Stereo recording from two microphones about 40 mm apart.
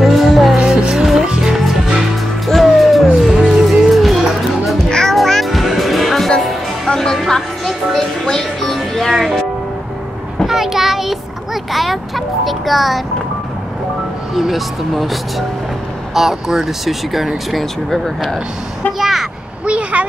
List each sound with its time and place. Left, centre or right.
0.0 s music: centre
0.7 s music: centre
3.3 s music: centre
3.9 s music: centre
4.8 s music: centre
5.1 s music: centre
6.9 s music: centre
10.4 s a sound: centre
12.4 s music: centre
14.3 s speech: centre
19.6 s vehicle: right